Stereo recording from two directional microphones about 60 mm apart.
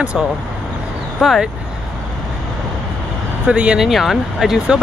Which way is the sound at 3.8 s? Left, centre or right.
Centre.